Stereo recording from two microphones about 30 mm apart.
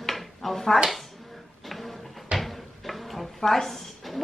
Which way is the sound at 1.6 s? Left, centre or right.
Centre.